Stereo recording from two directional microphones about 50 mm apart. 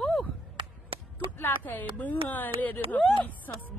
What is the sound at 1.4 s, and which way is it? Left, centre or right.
A woman's voice, left.